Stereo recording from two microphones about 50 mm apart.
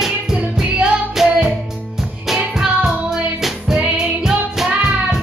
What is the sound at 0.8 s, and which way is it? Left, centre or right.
Music, centre.